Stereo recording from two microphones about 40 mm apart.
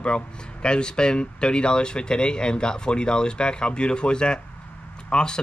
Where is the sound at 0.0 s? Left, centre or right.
Left.